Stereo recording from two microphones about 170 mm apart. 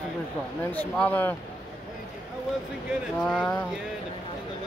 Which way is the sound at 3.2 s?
5° left (ahead or behind).